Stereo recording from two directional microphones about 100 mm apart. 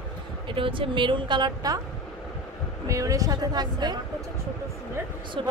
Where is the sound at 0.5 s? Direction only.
60° right (ahead or behind); by 1.7 s 45° right (ahead or behind).